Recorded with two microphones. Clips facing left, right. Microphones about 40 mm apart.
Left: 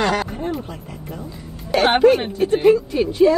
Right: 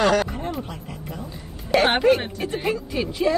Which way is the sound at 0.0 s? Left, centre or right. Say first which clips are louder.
Right 1 dB; left.